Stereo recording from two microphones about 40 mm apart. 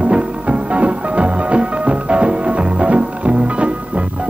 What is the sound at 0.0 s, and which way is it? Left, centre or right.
Music, right.